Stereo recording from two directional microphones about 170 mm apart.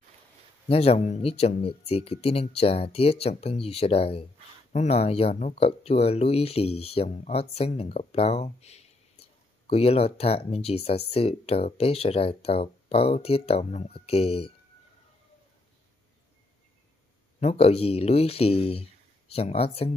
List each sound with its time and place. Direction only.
0.7 s speech: 35° left (ahead or behind)
17.4 s speech: 35° left (ahead or behind)